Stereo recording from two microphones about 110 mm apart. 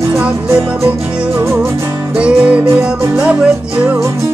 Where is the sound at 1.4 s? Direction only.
20° right (ahead or behind).